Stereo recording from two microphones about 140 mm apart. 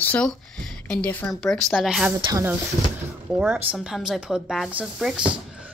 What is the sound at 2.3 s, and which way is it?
Speech, 15° right (ahead or behind).